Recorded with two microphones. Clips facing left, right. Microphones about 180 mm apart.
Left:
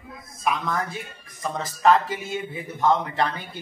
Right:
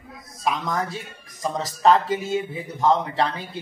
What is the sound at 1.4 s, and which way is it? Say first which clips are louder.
A man's voice: right 1 dB; 30° right (ahead or behind).